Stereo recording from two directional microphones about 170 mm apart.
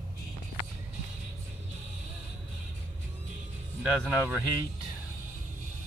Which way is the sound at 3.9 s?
5° right (ahead or behind).